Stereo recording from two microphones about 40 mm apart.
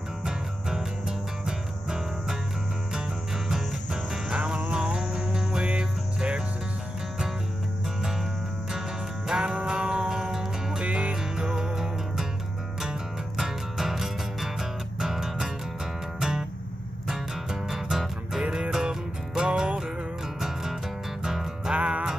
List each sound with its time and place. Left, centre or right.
0.2 s music: centre
4.3 s music: right
9.3 s music: centre
10.8 s music: right
11.3 s music: centre
13.4 s music: centre
18.4 s music: right
18.7 s music: centre
20.3 s music: centre
21.7 s music: right